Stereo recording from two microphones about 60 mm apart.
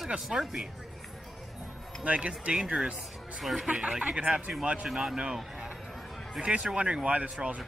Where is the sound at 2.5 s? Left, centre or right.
Centre.